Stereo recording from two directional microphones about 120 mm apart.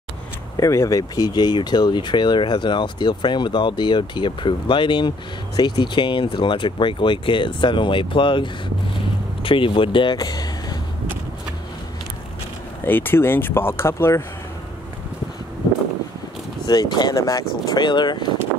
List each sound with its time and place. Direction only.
0.6 s speech: 25° left (ahead or behind)
12.8 s speech: 15° left (ahead or behind)
16.6 s speech: 35° left (ahead or behind)
17.8 s speech: 40° left (ahead or behind)